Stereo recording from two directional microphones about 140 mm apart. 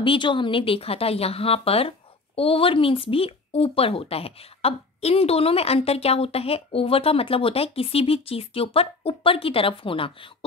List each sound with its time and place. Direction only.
0.0 s speech: 35° left (ahead or behind)